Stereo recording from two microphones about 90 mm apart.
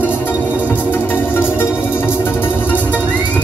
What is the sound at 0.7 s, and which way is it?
Music, 20° left (ahead or behind).